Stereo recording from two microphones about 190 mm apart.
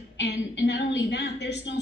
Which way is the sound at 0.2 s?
65° left (ahead or behind).